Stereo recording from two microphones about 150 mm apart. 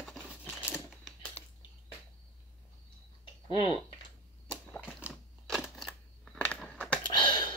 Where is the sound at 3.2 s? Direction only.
35° left (ahead or behind).